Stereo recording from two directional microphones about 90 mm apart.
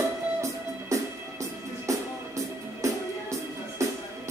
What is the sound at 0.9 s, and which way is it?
Music, 35° right (ahead or behind).